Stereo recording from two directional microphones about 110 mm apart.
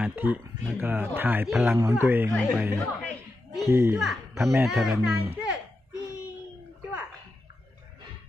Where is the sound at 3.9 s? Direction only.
Centre (ahead or behind).